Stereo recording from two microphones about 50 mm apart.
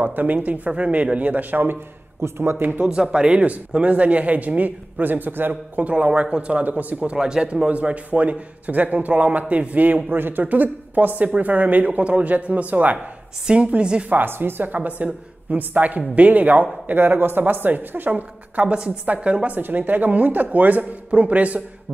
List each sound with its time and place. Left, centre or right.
0.0 s a woman's voice: right
2.2 s speech: right
2.8 s a man's voice: centre; by 5.5 s right
5.5 s a man's voice: right
7.2 s a man's voice: centre
14.1 s a woman's voice: right
19.1 s a man's voice: right
19.5 s a woman's voice: right